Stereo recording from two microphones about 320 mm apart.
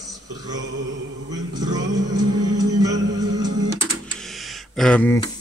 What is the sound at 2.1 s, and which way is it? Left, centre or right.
Music, right.